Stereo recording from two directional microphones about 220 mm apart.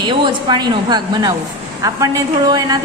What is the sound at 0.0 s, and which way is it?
A woman's voice, 20° right (ahead or behind).